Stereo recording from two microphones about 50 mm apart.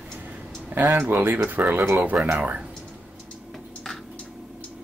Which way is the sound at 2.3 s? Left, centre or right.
Right.